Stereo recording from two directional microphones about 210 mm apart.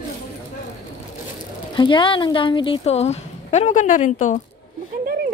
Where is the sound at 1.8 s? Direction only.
20° left (ahead or behind).